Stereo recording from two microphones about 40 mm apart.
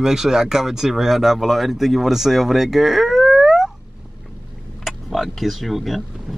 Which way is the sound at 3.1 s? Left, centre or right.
Centre.